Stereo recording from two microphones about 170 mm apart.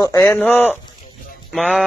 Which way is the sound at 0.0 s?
20° left (ahead or behind).